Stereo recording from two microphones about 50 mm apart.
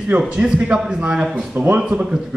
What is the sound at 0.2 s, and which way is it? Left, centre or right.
A man's voice, centre.